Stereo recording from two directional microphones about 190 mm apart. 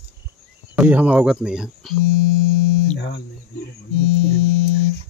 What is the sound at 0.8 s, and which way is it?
Speech, 10° right (ahead or behind).